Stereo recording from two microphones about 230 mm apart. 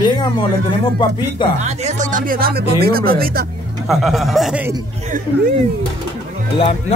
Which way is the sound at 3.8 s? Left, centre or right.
Centre.